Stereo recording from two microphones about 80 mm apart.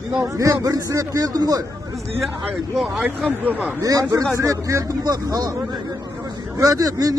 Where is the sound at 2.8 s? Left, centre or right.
Centre.